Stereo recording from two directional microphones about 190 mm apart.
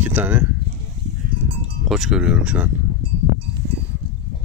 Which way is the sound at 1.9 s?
Centre (ahead or behind).